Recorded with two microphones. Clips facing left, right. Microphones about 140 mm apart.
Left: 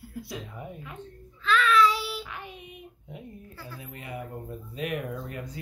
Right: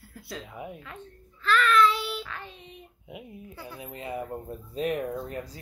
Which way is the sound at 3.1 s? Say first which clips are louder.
Right 2 dB; 10° right (ahead or behind).